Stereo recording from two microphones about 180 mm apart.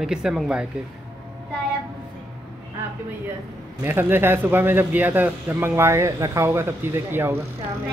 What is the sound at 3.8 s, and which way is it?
A man's voice, 10° right (ahead or behind).